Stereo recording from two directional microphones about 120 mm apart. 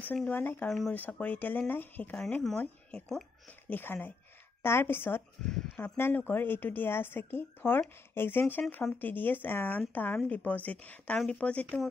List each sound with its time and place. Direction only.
0.0 s speech: 15° left (ahead or behind)
0.7 s speech: centre (ahead or behind)
1.1 s speech: 15° left (ahead or behind)
2.1 s speech: 5° left (ahead or behind)
5.4 s speech: 5° left (ahead or behind)
5.9 s speech: 20° left (ahead or behind)